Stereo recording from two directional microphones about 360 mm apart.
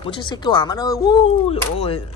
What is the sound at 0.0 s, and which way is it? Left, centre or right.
Speech, centre.